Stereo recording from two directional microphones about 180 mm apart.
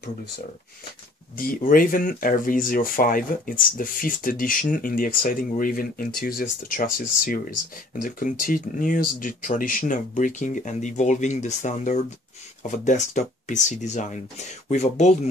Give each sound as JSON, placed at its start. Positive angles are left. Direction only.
{"t": 1.4, "sound": "speech", "side_deg": 50}